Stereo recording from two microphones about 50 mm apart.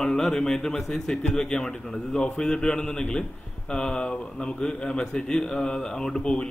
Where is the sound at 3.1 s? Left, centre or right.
Centre.